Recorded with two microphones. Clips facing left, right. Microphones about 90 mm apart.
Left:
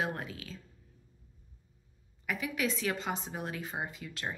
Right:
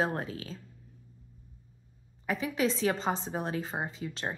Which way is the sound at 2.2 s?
30° right (ahead or behind).